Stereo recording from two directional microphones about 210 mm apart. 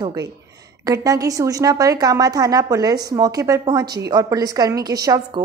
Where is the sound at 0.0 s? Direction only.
20° right (ahead or behind).